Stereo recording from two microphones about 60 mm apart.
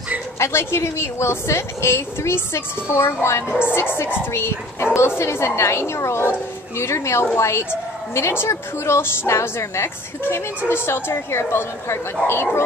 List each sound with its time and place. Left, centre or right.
0.4 s a woman's voice: left
4.3 s a woman's voice: left